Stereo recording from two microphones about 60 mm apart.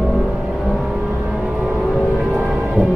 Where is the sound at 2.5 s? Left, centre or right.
Centre.